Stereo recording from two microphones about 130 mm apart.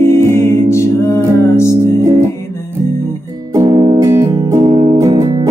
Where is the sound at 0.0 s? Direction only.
20° left (ahead or behind).